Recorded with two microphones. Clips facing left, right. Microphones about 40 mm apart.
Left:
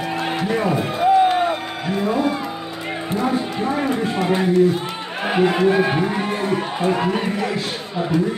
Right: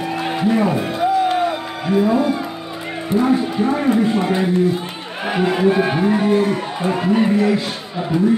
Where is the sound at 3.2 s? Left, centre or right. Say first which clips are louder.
Right 5 dB; centre.